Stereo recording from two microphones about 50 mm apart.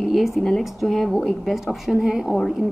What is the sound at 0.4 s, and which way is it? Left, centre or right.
Speech, centre.